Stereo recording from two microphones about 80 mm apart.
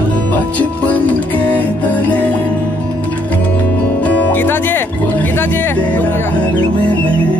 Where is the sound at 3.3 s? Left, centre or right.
Left.